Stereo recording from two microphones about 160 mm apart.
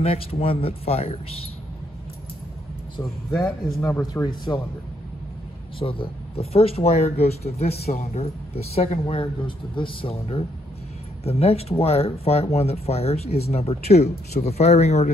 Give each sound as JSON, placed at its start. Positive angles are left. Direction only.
{"t": 0.0, "sound": "speech", "side_deg": 35}
{"t": 3.8, "sound": "speech", "side_deg": 20}
{"t": 5.8, "sound": "speech", "side_deg": 35}